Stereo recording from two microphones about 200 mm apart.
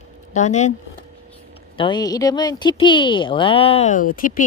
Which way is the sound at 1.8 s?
20° left (ahead or behind).